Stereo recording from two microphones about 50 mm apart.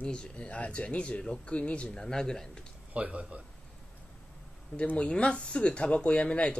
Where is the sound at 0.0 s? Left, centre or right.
Centre.